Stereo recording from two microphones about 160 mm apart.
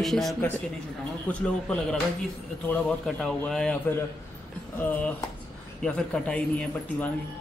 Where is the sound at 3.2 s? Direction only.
5° left (ahead or behind).